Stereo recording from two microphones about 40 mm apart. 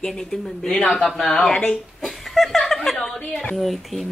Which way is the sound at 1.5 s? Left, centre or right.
Centre.